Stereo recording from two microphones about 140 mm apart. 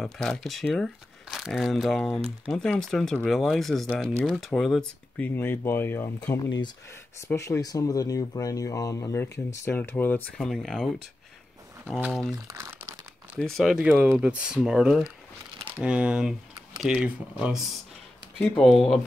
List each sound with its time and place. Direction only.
0.0 s speech: 5° left (ahead or behind)
7.2 s speech: 20° left (ahead or behind); by 12.4 s 5° right (ahead or behind)
12.4 s crumpling: 20° right (ahead or behind)
13.4 s speech: centre (ahead or behind)